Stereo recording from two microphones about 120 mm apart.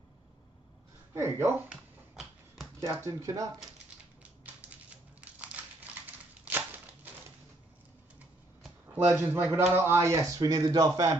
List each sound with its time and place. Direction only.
1.1 s speech: 25° right (ahead or behind)
1.7 s finger snapping: centre (ahead or behind)
2.9 s speech: 25° right (ahead or behind)
4.2 s typing: 15° right (ahead or behind)
5.2 s crumpling: 10° right (ahead or behind)
8.9 s speech: 15° right (ahead or behind)